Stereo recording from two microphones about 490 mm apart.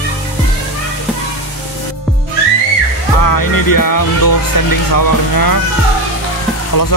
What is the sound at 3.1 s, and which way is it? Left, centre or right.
Music, left.